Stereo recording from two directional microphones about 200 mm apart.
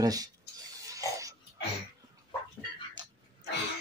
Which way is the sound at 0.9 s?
15° right (ahead or behind).